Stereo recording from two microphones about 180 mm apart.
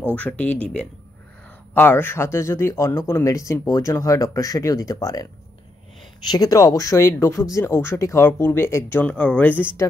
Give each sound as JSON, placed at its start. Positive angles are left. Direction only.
{"t": 0.1, "sound": "speech", "side_deg": 10}
{"t": 1.7, "sound": "speech", "side_deg": 10}
{"t": 6.3, "sound": "speech", "side_deg": 20}